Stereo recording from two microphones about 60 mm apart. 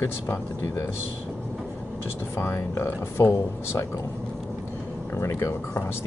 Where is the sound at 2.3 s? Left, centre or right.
Left.